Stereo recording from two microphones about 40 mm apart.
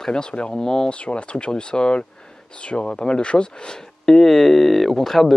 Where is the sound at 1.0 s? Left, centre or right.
Left.